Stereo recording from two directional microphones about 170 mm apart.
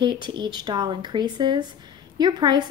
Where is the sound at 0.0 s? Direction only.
25° right (ahead or behind).